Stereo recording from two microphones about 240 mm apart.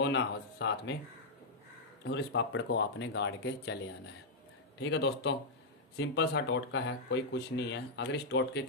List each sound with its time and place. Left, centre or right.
0.0 s speech: left
2.0 s speech: left
4.7 s speech: left